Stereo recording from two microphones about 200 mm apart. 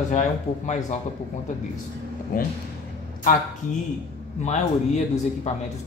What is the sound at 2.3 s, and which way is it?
Speech, 45° left (ahead or behind).